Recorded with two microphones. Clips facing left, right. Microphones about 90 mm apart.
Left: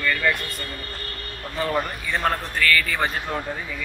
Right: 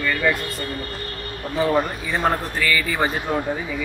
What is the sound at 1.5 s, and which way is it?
A man's voice, 15° right (ahead or behind).